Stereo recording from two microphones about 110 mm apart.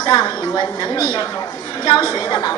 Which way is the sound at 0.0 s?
40° left (ahead or behind).